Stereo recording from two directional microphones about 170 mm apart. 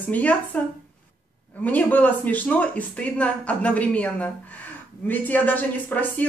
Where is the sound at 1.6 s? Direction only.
10° left (ahead or behind).